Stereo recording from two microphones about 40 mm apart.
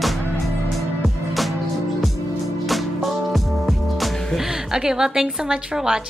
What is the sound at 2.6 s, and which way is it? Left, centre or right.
Music, centre.